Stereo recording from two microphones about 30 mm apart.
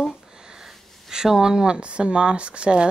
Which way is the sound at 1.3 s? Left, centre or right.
Centre.